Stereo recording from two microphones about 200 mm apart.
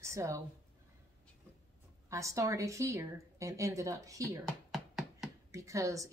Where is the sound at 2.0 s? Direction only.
15° right (ahead or behind).